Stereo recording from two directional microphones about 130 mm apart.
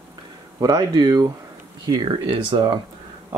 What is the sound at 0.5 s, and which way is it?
Speech, 30° right (ahead or behind).